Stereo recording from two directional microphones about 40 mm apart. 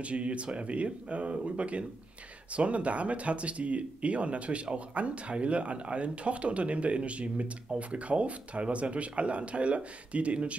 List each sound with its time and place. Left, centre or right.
0.0 s speech: right